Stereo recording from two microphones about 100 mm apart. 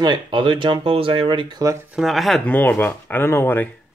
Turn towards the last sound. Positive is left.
turn(degrees=20)  # may be behind; listen again after turning